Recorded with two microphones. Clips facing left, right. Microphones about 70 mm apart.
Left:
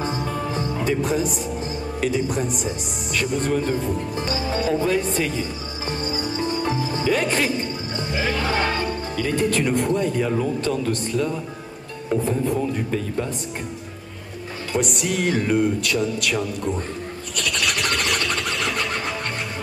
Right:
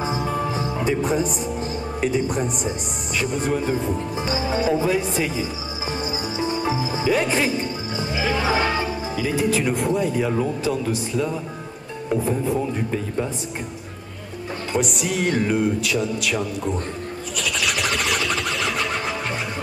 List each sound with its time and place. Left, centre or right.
0.0 s music: centre
2.0 s speech: centre
14.8 s speech: centre
17.4 s sewing machine: centre